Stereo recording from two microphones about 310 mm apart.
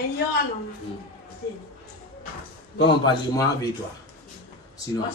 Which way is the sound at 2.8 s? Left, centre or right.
Centre.